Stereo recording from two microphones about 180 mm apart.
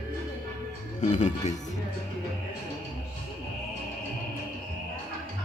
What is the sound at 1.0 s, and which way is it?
Speech, 40° left (ahead or behind).